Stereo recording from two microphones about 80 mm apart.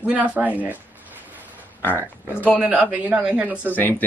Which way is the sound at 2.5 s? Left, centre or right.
Centre.